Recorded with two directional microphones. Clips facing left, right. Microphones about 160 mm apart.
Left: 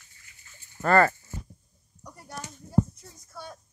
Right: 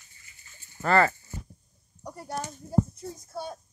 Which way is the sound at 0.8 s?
45° left (ahead or behind).